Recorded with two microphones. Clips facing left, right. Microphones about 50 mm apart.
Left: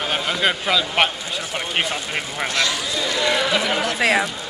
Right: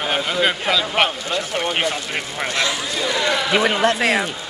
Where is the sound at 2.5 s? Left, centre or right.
Right.